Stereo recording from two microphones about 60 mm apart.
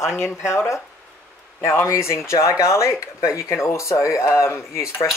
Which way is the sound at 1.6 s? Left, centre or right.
Left.